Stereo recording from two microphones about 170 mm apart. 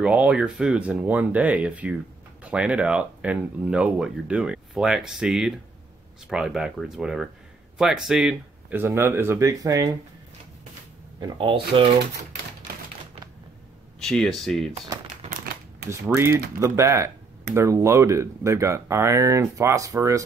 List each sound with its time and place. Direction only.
0.0 s speech: 5° right (ahead or behind)
11.1 s speech: 30° right (ahead or behind)
13.9 s speech: 5° left (ahead or behind)
15.9 s speech: 15° right (ahead or behind)